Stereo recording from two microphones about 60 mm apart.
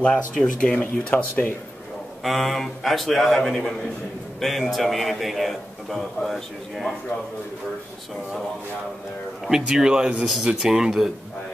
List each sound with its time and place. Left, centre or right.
0.0 s speech: centre
2.2 s a man's voice: centre
9.5 s speech: centre